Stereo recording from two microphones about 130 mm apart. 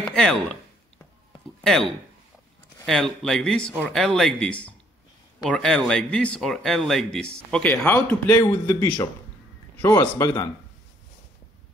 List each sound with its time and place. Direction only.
0.1 s a sound: 5° left (ahead or behind)
1.6 s a man's voice: 5° left (ahead or behind)
7.5 s a man's voice: 15° left (ahead or behind)